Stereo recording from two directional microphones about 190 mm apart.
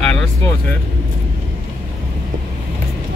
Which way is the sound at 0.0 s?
5° left (ahead or behind).